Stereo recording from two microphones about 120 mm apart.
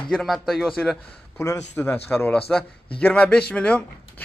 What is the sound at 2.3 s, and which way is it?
Speech, 5° left (ahead or behind).